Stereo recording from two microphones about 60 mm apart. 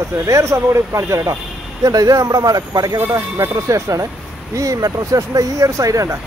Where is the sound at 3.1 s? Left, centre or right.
Right.